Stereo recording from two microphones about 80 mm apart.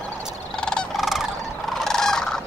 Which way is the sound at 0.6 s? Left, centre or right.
Centre.